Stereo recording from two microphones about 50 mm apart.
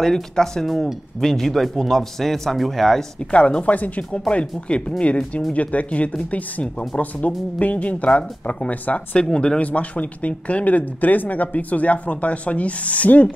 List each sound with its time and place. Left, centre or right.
0.0 s speech: centre
3.3 s speech: left